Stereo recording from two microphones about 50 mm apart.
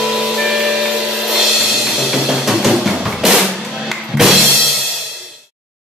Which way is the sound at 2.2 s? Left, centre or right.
Centre.